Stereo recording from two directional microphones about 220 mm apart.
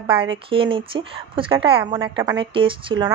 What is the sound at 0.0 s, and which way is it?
A woman's voice, 25° right (ahead or behind).